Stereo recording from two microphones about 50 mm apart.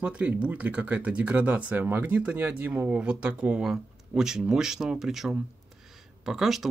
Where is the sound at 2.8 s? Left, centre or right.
Right.